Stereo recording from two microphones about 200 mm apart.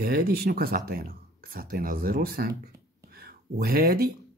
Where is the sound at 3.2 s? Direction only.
50° right (ahead or behind).